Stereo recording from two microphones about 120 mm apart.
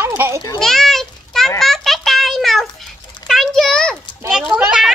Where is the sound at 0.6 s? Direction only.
5° left (ahead or behind).